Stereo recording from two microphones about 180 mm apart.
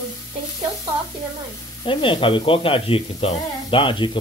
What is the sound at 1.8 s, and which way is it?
Speech, 30° left (ahead or behind).